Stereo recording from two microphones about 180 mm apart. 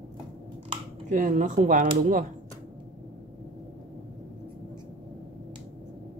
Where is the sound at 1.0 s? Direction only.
45° right (ahead or behind).